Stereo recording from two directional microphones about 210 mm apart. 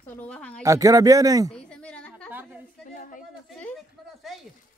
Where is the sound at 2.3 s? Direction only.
10° right (ahead or behind).